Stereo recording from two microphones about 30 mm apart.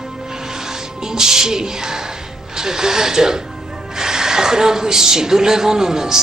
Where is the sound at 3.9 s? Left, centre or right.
Centre.